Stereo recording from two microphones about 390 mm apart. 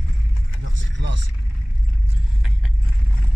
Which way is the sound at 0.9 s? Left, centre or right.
Right.